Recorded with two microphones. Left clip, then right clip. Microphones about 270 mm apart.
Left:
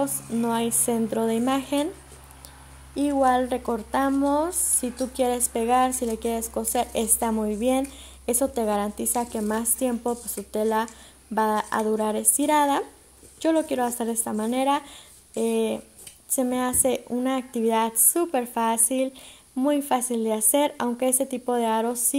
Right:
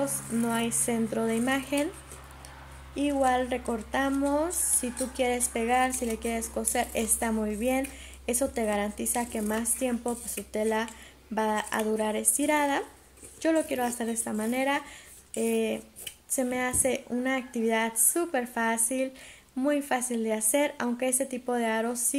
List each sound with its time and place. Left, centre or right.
0.0 s speech: left
3.0 s speech: left